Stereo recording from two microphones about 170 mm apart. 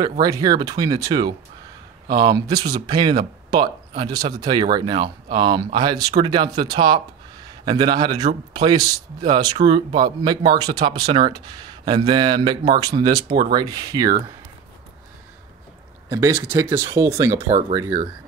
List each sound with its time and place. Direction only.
0.2 s a man's voice: 20° right (ahead or behind)
16.1 s speech: 15° right (ahead or behind)
17.5 s speech: 35° right (ahead or behind)
17.7 s a man's voice: 20° right (ahead or behind)